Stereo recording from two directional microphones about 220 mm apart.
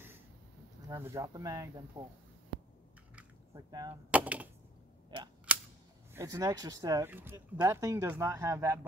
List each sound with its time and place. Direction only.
0.8 s speech: 15° right (ahead or behind)
3.5 s speech: 15° right (ahead or behind)
4.1 s speech: 5° right (ahead or behind)
5.5 s cap gun: 5° right (ahead or behind)
6.1 s speech: 15° right (ahead or behind)